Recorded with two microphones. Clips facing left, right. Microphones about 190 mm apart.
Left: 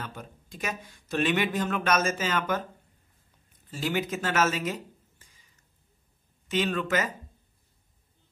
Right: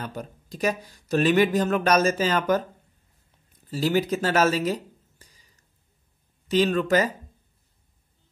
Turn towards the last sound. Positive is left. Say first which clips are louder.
# right 6 dB
turn(degrees=-35)  # may be behind; listen again after turning